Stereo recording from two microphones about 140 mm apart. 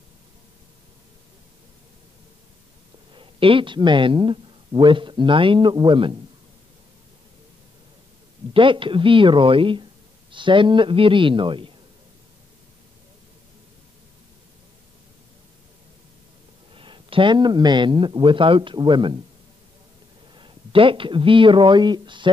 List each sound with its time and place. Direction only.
3.2 s speech: 40° right (ahead or behind)
8.5 s speech: 35° right (ahead or behind)
16.7 s speech: 40° right (ahead or behind)
20.3 s speech: 35° right (ahead or behind)